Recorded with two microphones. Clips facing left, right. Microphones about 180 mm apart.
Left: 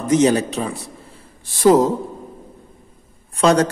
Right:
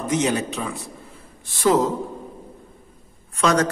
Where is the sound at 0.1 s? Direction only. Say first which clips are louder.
Left 7 dB; 35° left (ahead or behind).